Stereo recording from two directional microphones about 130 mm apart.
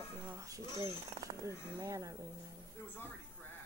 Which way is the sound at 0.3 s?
25° right (ahead or behind).